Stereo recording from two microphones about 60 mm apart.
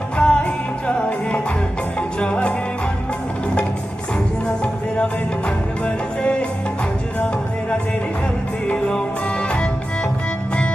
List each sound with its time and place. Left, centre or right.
0.2 s music: centre
8.6 s music: centre